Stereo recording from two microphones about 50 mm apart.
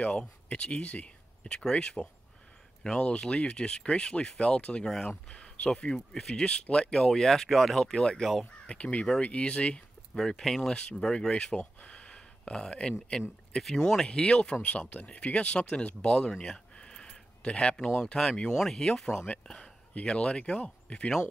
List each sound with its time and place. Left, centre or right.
0.0 s speech: left
4.8 s speech: centre
5.3 s speech: centre
8.6 s speech: left
10.1 s speech: centre
10.7 s speech: left
19.1 s speech: left
19.4 s speech: centre
19.9 s speech: left